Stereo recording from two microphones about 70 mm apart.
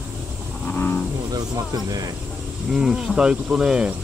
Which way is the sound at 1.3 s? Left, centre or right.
Right.